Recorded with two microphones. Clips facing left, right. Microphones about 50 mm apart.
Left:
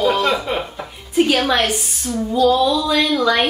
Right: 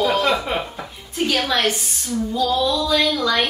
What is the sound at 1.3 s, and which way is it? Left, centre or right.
Speech, centre.